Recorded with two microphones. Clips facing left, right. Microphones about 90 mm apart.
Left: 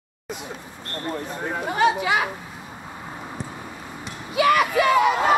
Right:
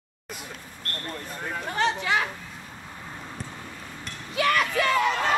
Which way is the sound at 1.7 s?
10° left (ahead or behind).